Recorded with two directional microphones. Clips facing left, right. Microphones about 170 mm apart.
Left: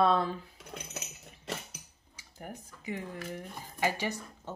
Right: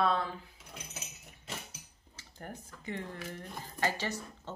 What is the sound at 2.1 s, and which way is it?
Speech, 10° left (ahead or behind).